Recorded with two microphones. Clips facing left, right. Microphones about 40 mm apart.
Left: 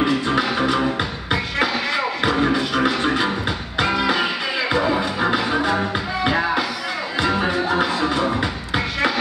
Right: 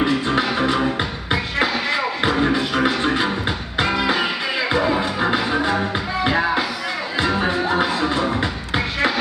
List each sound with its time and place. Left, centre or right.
0.9 s music: centre
4.2 s music: centre